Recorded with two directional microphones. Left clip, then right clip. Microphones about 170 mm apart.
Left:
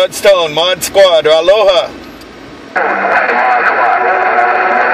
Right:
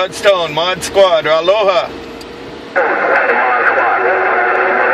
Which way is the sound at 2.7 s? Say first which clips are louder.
Left 1 dB; 40° left (ahead or behind).